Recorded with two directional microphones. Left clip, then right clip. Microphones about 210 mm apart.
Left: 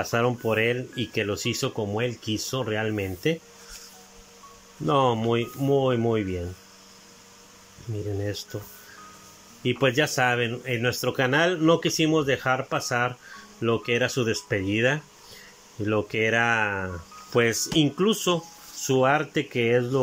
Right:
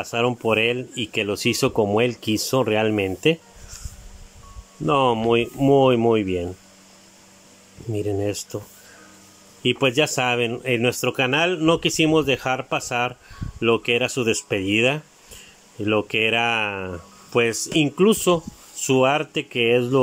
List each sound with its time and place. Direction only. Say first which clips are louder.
0.0 s speech: right 2 dB; 15° right (ahead or behind)
4.8 s speech: right 4 dB; 10° right (ahead or behind)
7.9 s speech: right 7 dB; 15° right (ahead or behind)
9.6 s speech: right 3 dB; 10° right (ahead or behind)